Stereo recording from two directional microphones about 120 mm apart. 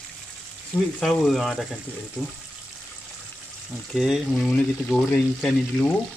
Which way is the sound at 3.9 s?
5° right (ahead or behind).